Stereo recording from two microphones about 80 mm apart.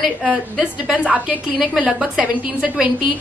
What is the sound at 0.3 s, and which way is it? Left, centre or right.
A woman's voice, centre.